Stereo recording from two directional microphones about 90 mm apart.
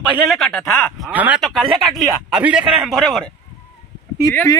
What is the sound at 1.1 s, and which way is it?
Speech, 20° right (ahead or behind).